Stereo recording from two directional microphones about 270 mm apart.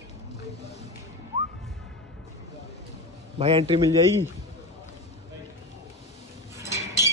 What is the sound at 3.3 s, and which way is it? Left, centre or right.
Speech, centre.